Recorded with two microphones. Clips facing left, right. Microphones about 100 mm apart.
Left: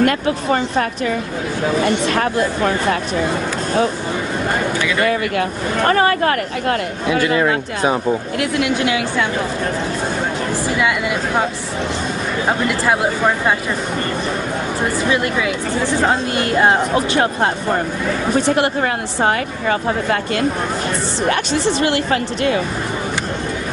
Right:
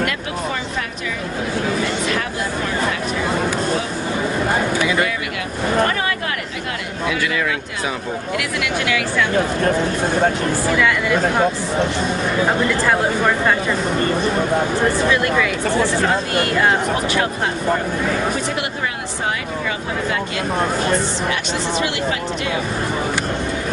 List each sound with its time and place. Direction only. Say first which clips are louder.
0.0 s speech: left 6 dB; 45° left (ahead or behind)
2.0 s speech: left 5 dB; 45° left (ahead or behind)
5.9 s speech: left 7 dB; 45° left (ahead or behind); by 9.0 s 25° left (ahead or behind)
15.0 s speech: even; 20° left (ahead or behind)
21.8 s speech: left 4 dB; 50° left (ahead or behind)